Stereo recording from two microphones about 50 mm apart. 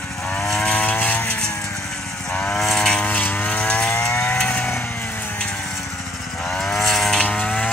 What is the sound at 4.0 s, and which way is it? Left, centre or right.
Chainsaw, left.